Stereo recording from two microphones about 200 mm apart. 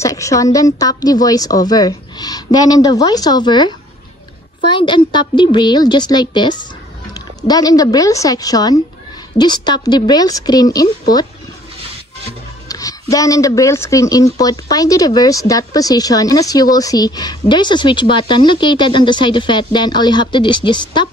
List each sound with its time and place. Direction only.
0.0 s speech: 15° left (ahead or behind)
12.6 s speech: 15° left (ahead or behind)